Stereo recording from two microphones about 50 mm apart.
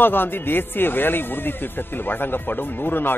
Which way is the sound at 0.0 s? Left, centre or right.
Left.